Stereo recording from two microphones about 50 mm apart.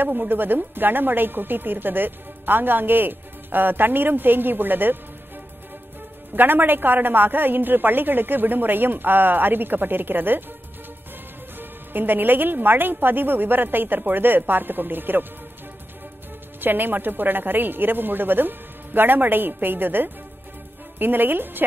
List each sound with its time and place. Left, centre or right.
0.0 s a woman's voice: right
6.3 s a woman's voice: right
11.5 s a woman's voice: right
16.6 s a woman's voice: right